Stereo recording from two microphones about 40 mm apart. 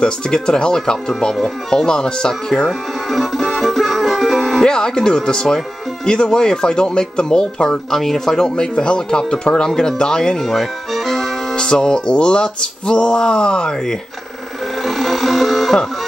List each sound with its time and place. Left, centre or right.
0.0 s music: centre
1.7 s speech: centre
3.1 s music: centre
4.6 s speech: centre
6.0 s music: centre
7.9 s speech: centre
8.4 s music: left
9.8 s speech: centre
10.4 s music: centre
11.5 s music: centre
14.8 s a sound: centre